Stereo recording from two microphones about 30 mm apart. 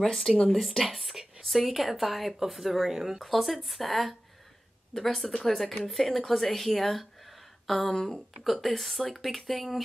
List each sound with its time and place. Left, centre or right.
0.0 s speech: centre
0.5 s speech: centre
3.2 s speech: centre
5.2 s speech: centre
5.5 s speech: centre
7.9 s speech: centre
8.5 s speech: centre